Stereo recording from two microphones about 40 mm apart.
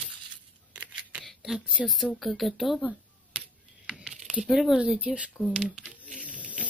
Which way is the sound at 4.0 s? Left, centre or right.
Centre.